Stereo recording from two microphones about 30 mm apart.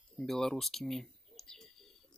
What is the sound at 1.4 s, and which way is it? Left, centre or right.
Bird, centre.